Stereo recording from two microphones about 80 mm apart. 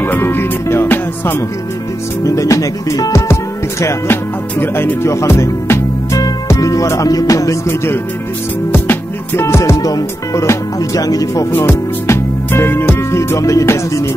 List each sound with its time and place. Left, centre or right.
0.0 s music: left
2.2 s speech: left
3.8 s music: left
7.6 s speech: left
8.7 s music: left
11.0 s speech: left
11.5 s music: left